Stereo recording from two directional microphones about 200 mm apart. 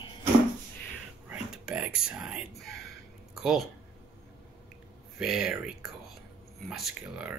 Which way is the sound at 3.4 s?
Centre (ahead or behind).